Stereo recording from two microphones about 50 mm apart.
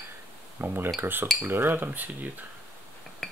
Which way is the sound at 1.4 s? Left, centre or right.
Right.